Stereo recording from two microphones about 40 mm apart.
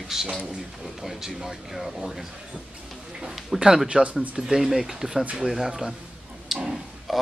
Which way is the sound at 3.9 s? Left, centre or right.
Right.